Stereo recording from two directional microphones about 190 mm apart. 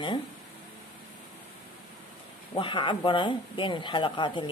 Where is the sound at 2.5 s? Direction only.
25° left (ahead or behind).